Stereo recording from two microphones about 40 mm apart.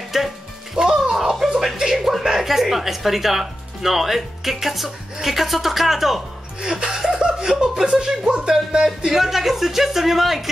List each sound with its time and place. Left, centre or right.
0.1 s music: centre
0.8 s music: right
1.6 s a sound: centre
2.0 s speech: centre
6.6 s speech: centre